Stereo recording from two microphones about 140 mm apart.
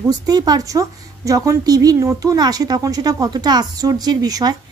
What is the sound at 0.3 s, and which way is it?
Speech, 30° right (ahead or behind).